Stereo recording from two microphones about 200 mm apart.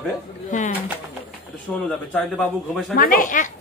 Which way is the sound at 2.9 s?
45° left (ahead or behind).